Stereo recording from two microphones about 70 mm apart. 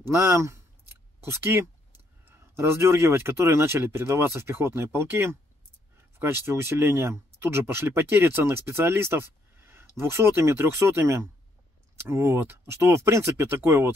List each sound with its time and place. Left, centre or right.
0.0 s speech: right
0.8 s a sound: right
2.3 s speech: right